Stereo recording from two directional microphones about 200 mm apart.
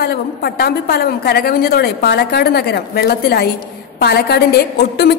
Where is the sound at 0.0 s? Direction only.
50° left (ahead or behind).